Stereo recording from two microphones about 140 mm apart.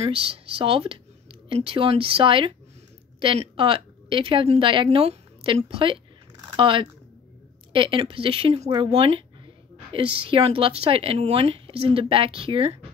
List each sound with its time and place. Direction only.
0.0 s a woman's voice: 40° right (ahead or behind)